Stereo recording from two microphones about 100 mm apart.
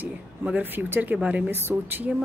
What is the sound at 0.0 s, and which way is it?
Speech, 20° right (ahead or behind).